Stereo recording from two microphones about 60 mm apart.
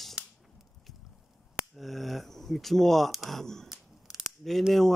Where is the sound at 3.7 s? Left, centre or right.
Centre.